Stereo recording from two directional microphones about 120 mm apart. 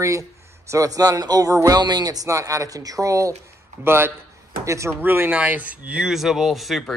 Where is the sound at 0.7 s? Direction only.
25° right (ahead or behind).